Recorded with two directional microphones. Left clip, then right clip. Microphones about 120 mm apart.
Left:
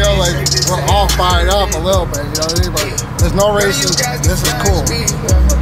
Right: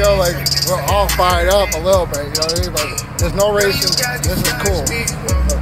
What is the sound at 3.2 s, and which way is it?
Speech, 5° right (ahead or behind).